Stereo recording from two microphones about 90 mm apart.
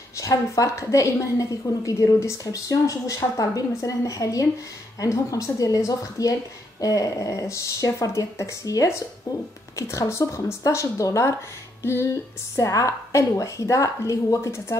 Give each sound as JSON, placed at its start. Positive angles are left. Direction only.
{"t": 0.2, "sound": "a woman's voice", "side_deg": 40}
{"t": 11.8, "sound": "a sound", "side_deg": 25}
{"t": 12.5, "sound": "a woman's voice", "side_deg": 35}